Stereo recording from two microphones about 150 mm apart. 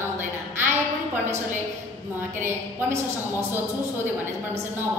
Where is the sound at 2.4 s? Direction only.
15° right (ahead or behind).